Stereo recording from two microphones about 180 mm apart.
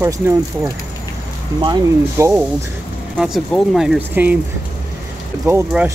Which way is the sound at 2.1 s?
15° right (ahead or behind).